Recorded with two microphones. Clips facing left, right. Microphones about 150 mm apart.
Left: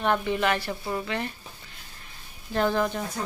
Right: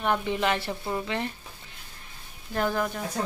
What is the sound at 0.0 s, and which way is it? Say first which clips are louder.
A woman's voice: left 1 dB; 15° right (ahead or behind).